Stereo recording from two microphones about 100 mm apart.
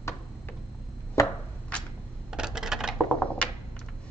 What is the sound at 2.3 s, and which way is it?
Coin, 5° right (ahead or behind).